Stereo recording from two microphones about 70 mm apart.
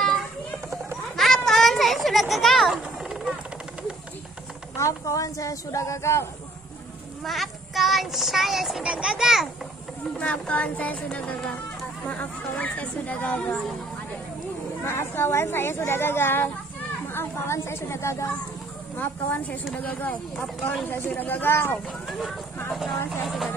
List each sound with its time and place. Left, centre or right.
1.1 s children playing: centre
4.7 s speech: left
7.2 s a child's voice: centre
10.1 s speech: centre
14.8 s speech: left
18.9 s speech: left
23.2 s a child's voice: centre